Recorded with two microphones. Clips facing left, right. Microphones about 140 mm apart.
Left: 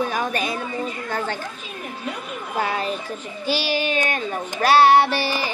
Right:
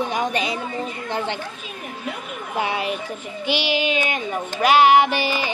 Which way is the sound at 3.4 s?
15° right (ahead or behind).